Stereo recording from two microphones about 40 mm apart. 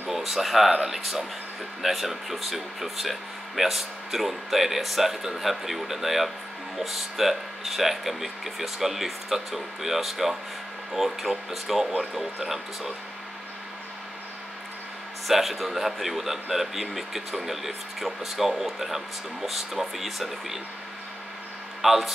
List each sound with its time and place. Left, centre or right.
0.1 s a man's voice: centre
15.2 s a man's voice: centre
21.8 s a man's voice: centre